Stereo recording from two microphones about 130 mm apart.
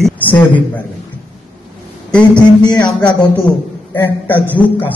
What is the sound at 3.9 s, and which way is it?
Speech, 15° left (ahead or behind).